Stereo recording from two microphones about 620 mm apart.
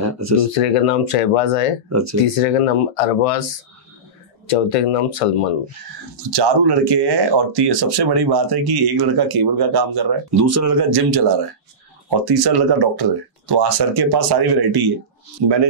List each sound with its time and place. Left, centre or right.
0.0 s a sound: right
0.5 s speech: left
4.5 s speech: left
6.3 s speech: right